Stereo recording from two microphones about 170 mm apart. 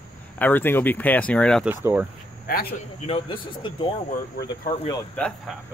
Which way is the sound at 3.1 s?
30° left (ahead or behind).